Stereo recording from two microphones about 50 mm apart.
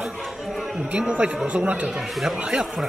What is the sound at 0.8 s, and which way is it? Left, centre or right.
A man's voice, right.